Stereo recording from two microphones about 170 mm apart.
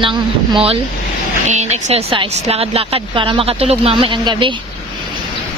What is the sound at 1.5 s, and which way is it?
Speech, 40° right (ahead or behind).